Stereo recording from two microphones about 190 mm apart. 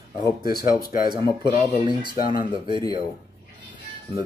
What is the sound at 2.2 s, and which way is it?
Speech, 50° left (ahead or behind).